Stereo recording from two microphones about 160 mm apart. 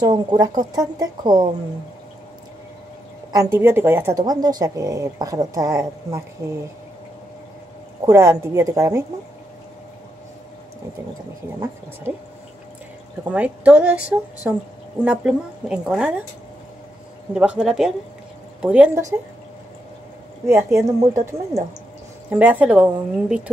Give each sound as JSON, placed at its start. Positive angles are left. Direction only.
{"t": 0.0, "sound": "a woman's voice", "side_deg": -25}
{"t": 3.3, "sound": "speech", "side_deg": -15}
{"t": 4.2, "sound": "a woman's voice", "side_deg": -25}
{"t": 8.0, "sound": "a woman's voice", "side_deg": -20}
{"t": 13.2, "sound": "a woman's voice", "side_deg": -10}
{"t": 17.3, "sound": "a woman's voice", "side_deg": -5}
{"t": 20.4, "sound": "a woman's voice", "side_deg": -15}